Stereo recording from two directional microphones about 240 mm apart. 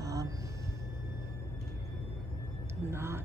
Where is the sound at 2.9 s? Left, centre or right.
Centre.